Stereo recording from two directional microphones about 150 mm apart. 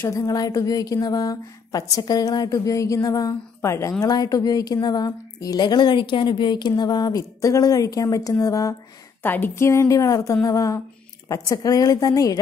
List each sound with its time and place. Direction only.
0.0 s a woman's voice: 20° left (ahead or behind)